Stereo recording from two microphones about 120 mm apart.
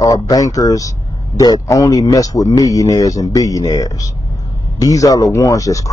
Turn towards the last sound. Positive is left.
turn(degrees=30)  # may be behind; listen again after turning